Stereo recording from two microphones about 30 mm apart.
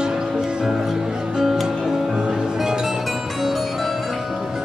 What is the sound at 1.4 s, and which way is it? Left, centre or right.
Music, centre.